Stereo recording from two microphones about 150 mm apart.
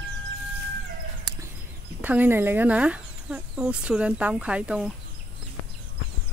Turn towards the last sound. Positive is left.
turn(degrees=-5)  # may be behind; listen again after turning